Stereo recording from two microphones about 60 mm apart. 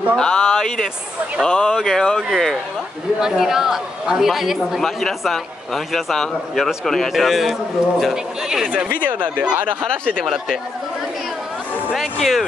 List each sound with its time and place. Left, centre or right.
0.1 s speech: centre
8.7 s speech: right
9.8 s speech: centre
11.9 s speech: centre